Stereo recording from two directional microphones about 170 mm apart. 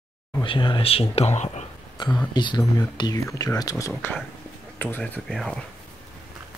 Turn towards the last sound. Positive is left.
turn(degrees=5)  # may be behind; listen again after turning